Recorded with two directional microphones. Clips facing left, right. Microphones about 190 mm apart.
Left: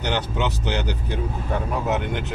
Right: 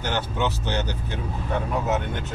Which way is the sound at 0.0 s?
20° left (ahead or behind).